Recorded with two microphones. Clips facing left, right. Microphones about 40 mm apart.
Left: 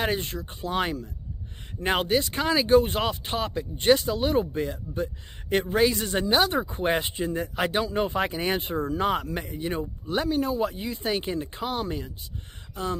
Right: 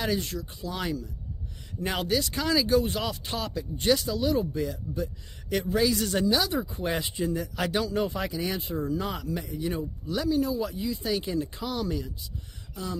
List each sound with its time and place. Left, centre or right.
0.0 s speech: left
5.9 s speech: left
6.3 s speech: left